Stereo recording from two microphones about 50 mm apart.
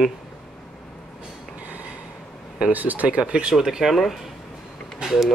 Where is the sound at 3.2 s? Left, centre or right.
Centre.